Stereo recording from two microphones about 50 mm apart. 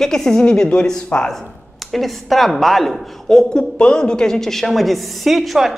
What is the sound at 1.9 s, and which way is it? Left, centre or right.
A woman's voice, centre.